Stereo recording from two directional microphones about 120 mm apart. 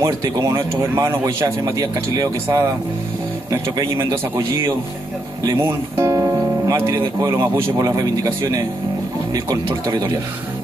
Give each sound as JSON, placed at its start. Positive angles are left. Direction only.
{"t": 0.0, "sound": "speech", "side_deg": -30}
{"t": 3.7, "sound": "speech", "side_deg": -25}